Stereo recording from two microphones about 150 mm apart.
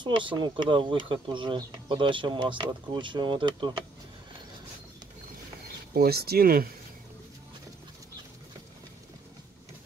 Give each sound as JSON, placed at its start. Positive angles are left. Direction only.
{"t": 0.0, "sound": "speech", "side_deg": -30}
{"t": 5.9, "sound": "speech", "side_deg": -90}